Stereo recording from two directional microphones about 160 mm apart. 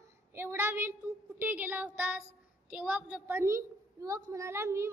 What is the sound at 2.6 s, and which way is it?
A woman's voice, 10° right (ahead or behind).